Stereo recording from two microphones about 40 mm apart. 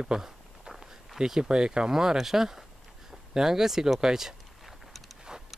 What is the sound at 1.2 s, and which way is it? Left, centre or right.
Speech, centre.